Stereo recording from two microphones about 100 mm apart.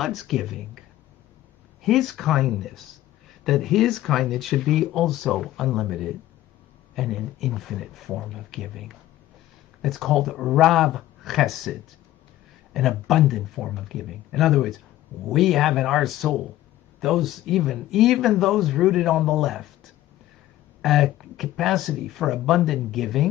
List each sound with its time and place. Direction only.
0.0 s speech: centre (ahead or behind)
1.8 s speech: centre (ahead or behind)
12.7 s speech: centre (ahead or behind)